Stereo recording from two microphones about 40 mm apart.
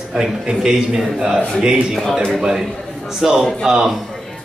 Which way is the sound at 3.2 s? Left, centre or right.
Centre.